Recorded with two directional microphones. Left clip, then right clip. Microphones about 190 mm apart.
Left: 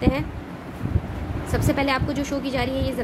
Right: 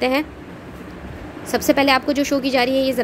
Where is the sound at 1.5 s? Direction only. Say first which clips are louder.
Right 7 dB; 30° right (ahead or behind).